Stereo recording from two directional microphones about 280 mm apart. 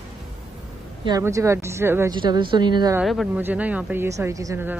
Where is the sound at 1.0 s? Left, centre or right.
Centre.